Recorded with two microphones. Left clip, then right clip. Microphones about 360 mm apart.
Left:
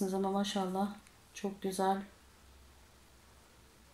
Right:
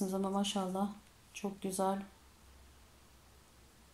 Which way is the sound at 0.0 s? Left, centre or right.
Centre.